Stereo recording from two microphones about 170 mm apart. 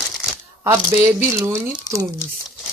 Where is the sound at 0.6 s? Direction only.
15° right (ahead or behind).